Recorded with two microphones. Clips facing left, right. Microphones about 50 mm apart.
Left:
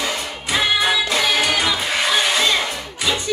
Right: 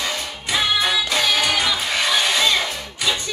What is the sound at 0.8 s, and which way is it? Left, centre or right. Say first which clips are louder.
Music: left 2 dB; centre.